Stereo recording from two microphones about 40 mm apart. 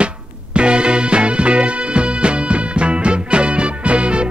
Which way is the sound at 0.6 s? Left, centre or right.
Right.